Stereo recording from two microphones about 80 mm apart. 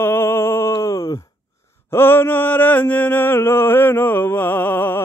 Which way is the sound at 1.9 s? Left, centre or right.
Left.